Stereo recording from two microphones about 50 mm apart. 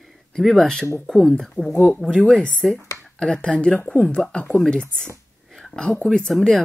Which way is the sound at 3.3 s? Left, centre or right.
Left.